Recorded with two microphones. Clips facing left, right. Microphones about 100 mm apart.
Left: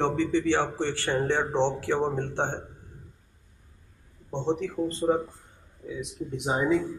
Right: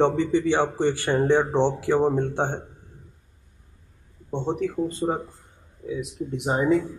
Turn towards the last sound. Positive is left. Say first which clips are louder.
# right 3 dB
turn(degrees=0)  # may be behind; listen again after turning